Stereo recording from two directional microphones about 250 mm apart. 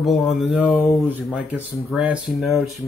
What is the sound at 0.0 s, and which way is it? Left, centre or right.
Speech, centre.